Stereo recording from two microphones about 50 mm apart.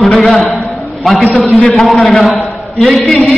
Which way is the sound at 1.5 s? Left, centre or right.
Centre.